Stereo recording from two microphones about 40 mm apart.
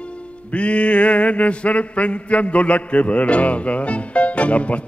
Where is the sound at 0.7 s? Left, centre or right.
Left.